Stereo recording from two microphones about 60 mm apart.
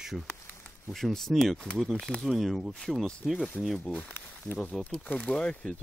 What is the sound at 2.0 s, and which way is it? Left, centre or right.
Speech, centre.